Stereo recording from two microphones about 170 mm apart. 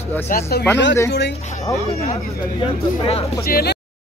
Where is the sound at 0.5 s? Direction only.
65° left (ahead or behind).